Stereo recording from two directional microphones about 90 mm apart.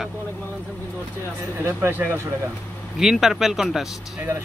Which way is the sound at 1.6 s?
25° right (ahead or behind).